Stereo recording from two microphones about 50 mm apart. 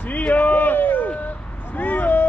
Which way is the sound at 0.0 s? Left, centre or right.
Left.